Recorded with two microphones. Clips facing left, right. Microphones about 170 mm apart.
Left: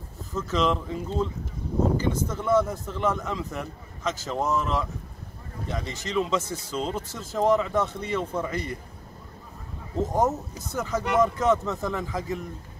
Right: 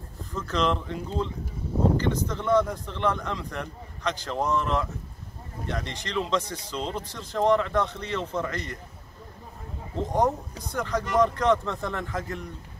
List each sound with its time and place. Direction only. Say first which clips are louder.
0.3 s speech: left 1 dB; centre (ahead or behind)
10.0 s speech: even; 5° left (ahead or behind)